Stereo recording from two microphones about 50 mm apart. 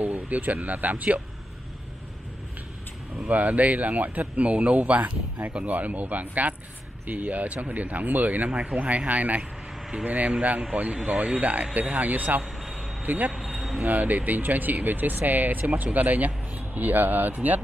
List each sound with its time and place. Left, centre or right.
0.0 s speech: right
3.2 s speech: right
9.4 s vehicle: centre
10.0 s speech: right